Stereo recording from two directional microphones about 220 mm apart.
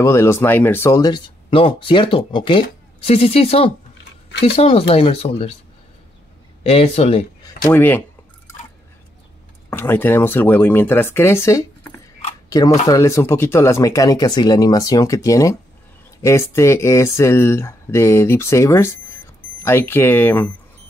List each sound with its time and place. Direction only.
0.0 s speech: 10° left (ahead or behind); by 5.6 s 25° left (ahead or behind)
6.6 s speech: 25° left (ahead or behind)
7.6 s speech: 10° left (ahead or behind)
9.7 s speech: 10° left (ahead or behind)
12.4 s a sound: 15° left (ahead or behind)
12.8 s speech: 15° left (ahead or behind)